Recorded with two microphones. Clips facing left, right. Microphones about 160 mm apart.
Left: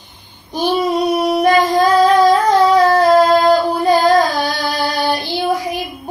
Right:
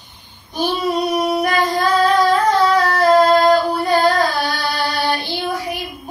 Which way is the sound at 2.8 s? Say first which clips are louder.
Left 3 dB; 10° left (ahead or behind).